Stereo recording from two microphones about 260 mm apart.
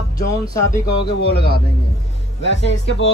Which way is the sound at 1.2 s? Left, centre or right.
Left.